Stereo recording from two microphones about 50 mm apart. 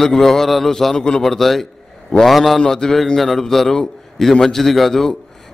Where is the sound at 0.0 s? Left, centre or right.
Centre.